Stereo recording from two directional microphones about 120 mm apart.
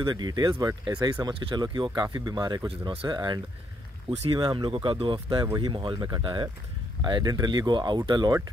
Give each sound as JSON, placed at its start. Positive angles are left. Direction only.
{"t": 0.0, "sound": "speech", "side_deg": -35}
{"t": 4.4, "sound": "speech", "side_deg": -40}